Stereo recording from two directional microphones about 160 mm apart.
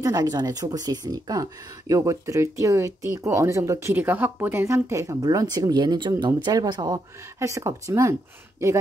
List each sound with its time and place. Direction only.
0.0 s speech: 25° right (ahead or behind)